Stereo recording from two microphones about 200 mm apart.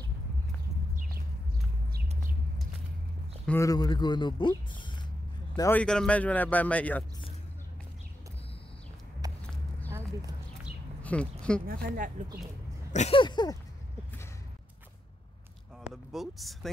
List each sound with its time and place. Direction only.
3.4 s speech: 15° left (ahead or behind)
5.6 s a man's voice: 10° left (ahead or behind)
9.2 s a sound: 20° right (ahead or behind)
11.0 s speech: 5° left (ahead or behind)
11.6 s speech: 45° right (ahead or behind)
12.9 s speech: 30° left (ahead or behind)
15.9 s speech: centre (ahead or behind)